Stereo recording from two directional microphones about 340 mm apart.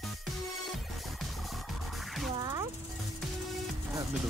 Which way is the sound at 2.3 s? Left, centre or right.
Centre.